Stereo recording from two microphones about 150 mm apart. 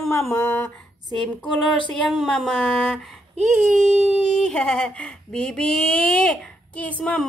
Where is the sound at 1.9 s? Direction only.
Centre (ahead or behind).